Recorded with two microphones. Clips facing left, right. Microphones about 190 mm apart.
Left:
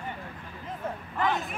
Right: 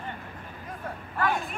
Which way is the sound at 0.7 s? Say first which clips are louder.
Left 3 dB; 20° left (ahead or behind).